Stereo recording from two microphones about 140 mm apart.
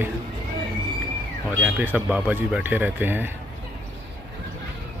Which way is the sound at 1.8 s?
10° right (ahead or behind).